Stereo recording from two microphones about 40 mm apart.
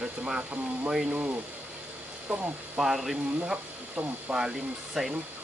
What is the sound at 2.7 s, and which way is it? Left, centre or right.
Speech, centre.